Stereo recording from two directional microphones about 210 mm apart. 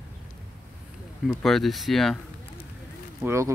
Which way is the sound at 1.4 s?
Centre (ahead or behind).